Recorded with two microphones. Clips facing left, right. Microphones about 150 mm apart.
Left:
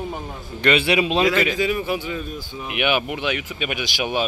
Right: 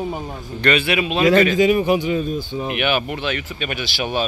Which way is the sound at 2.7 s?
15° left (ahead or behind).